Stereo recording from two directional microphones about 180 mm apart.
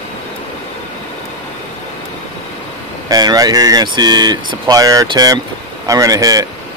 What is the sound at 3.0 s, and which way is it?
Speech, 20° right (ahead or behind).